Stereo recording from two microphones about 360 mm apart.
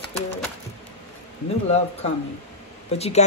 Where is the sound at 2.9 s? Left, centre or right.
Centre.